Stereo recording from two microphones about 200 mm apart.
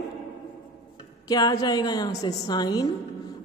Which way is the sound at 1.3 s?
20° left (ahead or behind).